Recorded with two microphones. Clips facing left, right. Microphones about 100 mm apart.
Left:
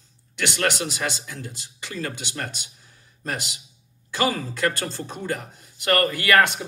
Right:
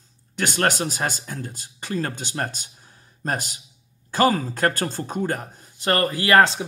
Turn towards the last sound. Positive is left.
turn(degrees=-30)  # may be behind; listen again after turning